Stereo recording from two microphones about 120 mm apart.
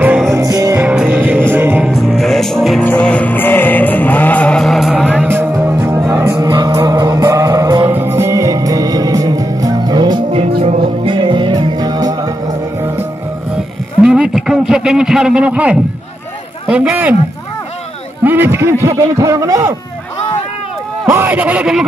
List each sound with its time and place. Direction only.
0.3 s music: 30° right (ahead or behind)
0.7 s music: 10° right (ahead or behind)
1.9 s music: centre (ahead or behind); by 6.3 s 25° right (ahead or behind)
6.3 s music: 35° right (ahead or behind)
7.8 s music: 20° right (ahead or behind); by 10.2 s 35° right (ahead or behind)
10.3 s music: 60° right (ahead or behind)
10.8 s music: 45° right (ahead or behind)
14.0 s a sound: 5° right (ahead or behind)
16.6 s speech: 10° right (ahead or behind)
18.2 s a sound: 15° right (ahead or behind)
21.1 s speech: 15° right (ahead or behind)